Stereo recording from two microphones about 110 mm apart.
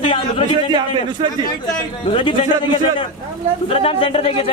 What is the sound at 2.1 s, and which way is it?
Speech, 60° left (ahead or behind).